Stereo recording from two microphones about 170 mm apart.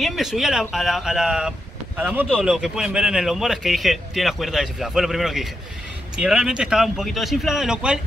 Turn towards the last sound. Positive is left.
turn(degrees=-5)  # may be behind; listen again after turning